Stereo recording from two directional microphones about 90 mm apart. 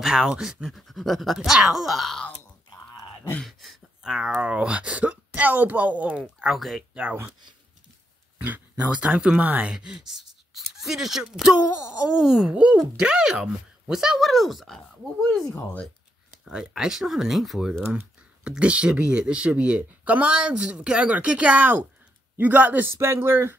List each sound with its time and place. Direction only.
0.0 s speech: 5° right (ahead or behind)
3.4 s a sound: centre (ahead or behind)
4.4 s speech: 10° right (ahead or behind)
6.4 s speech: centre (ahead or behind)
6.9 s speech: 15° right (ahead or behind)
8.5 s speech: 15° right (ahead or behind); by 14.8 s centre (ahead or behind)
16.4 s a man's voice: 5° right (ahead or behind); by 23.5 s 30° right (ahead or behind)